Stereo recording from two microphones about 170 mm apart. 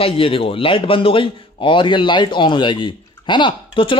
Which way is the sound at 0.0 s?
35° left (ahead or behind).